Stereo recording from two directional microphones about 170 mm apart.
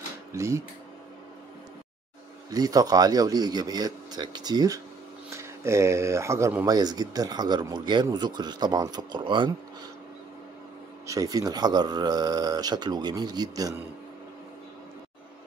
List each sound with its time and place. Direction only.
0.3 s speech: 15° right (ahead or behind)
2.5 s speech: 20° right (ahead or behind)
11.1 s speech: 20° right (ahead or behind)